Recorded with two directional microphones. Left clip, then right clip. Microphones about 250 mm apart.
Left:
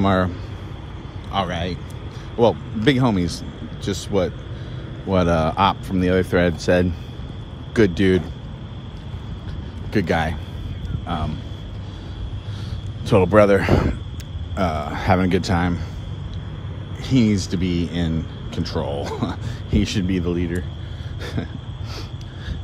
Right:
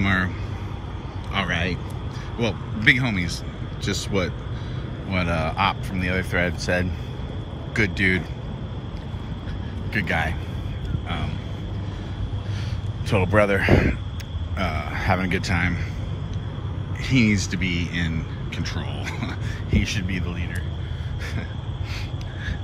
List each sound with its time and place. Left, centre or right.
0.0 s speech: centre
1.3 s speech: centre
5.1 s speech: centre
7.7 s speech: left
9.9 s speech: centre
13.6 s speech: centre
17.0 s speech: centre